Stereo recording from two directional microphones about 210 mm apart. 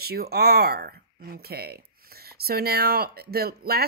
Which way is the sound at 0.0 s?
50° right (ahead or behind).